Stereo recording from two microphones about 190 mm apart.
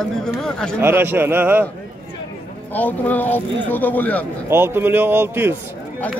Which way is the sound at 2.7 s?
10° left (ahead or behind).